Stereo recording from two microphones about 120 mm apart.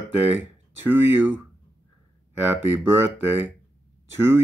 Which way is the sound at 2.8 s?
20° right (ahead or behind).